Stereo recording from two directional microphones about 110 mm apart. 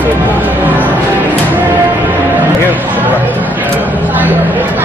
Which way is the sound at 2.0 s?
15° right (ahead or behind).